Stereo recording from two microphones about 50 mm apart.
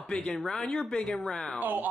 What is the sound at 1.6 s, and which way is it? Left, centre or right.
Speech, right.